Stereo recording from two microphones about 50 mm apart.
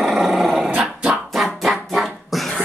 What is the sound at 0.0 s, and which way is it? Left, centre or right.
Dog, centre.